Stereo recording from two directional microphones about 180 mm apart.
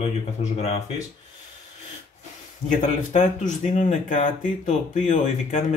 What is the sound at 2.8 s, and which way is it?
Speech, 40° left (ahead or behind).